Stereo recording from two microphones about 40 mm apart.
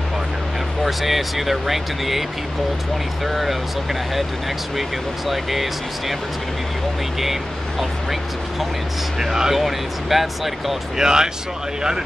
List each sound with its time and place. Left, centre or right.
0.8 s speech: centre
3.3 s speech: centre
4.7 s speech: centre
9.2 s speech: centre
11.0 s speech: centre